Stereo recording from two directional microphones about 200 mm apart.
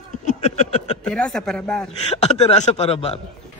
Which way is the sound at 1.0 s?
5° left (ahead or behind).